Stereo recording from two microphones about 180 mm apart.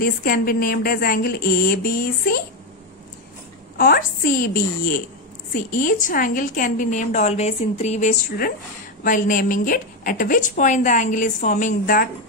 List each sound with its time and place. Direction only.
0.0 s speech: 55° left (ahead or behind)
3.7 s a woman's voice: 55° left (ahead or behind); by 8.1 s 35° left (ahead or behind)
9.0 s a woman's voice: 50° left (ahead or behind)